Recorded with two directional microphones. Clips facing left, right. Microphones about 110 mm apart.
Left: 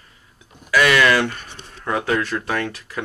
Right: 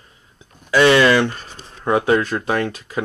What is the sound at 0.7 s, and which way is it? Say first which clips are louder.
Speech: right 3 dB; 30° right (ahead or behind).